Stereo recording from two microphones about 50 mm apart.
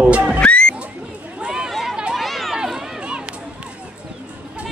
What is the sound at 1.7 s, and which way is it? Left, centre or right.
Chatter, centre.